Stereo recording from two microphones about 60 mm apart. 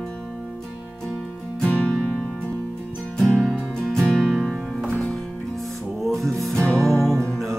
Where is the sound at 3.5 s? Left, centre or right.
Centre.